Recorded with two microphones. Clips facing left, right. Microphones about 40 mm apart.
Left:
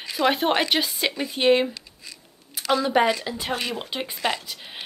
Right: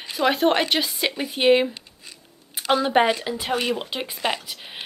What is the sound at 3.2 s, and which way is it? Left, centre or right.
Speech, centre.